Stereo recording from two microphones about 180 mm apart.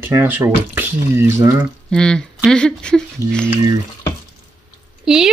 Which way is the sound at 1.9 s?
5° left (ahead or behind).